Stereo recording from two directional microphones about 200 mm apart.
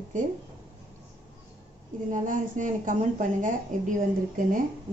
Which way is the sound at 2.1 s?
40° right (ahead or behind).